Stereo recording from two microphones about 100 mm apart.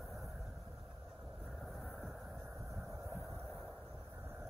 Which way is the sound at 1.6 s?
5° left (ahead or behind).